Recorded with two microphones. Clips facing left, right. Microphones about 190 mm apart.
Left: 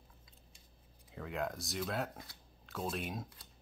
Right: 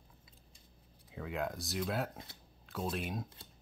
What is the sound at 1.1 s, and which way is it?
Speech, centre (ahead or behind).